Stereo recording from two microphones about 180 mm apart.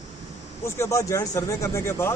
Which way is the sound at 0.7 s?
15° left (ahead or behind).